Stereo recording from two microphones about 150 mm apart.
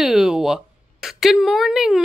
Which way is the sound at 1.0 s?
Centre (ahead or behind).